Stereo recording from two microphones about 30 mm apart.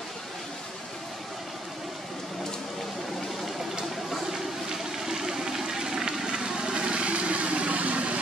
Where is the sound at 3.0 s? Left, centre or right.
Centre.